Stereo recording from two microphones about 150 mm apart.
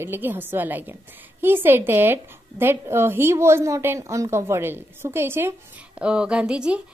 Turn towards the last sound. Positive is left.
turn(degrees=-5)  # may be behind; listen again after turning